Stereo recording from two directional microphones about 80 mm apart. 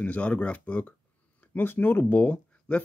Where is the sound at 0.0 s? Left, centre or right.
Centre.